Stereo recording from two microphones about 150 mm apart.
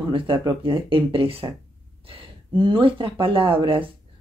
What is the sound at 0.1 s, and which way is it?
Speech, 30° right (ahead or behind).